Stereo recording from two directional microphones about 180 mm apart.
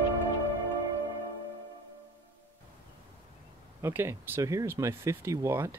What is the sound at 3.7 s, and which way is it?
Speech, 15° right (ahead or behind).